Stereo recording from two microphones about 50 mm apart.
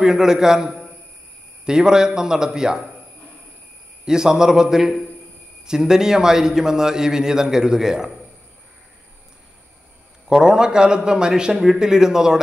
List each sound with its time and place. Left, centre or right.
0.0 s a man's voice: centre
4.0 s a man's voice: centre
10.2 s a man's voice: centre